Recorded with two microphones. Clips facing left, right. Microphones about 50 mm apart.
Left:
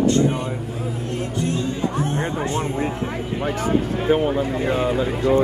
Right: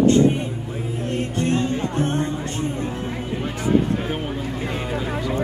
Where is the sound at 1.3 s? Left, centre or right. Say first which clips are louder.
Right 2 dB; right.